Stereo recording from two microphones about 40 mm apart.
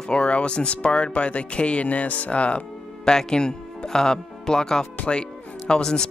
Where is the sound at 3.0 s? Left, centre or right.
Centre.